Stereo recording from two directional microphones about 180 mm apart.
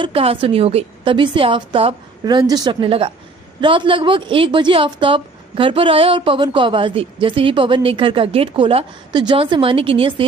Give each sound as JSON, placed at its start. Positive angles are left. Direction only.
{"t": 0.0, "sound": "a woman's voice", "side_deg": -30}